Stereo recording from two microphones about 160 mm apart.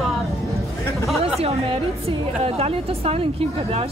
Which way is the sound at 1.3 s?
40° right (ahead or behind).